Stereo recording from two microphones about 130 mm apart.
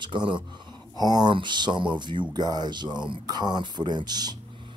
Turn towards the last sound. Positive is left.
turn(degrees=-30)  # may be behind; listen again after turning